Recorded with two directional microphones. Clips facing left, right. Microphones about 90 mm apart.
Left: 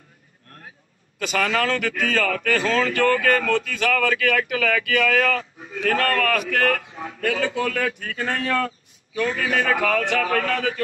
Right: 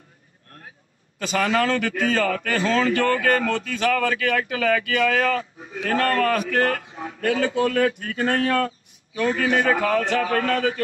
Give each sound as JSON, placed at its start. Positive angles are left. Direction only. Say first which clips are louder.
{"t": 1.2, "sound": "a man's voice", "louder": "right 1 dB", "side_deg": -25}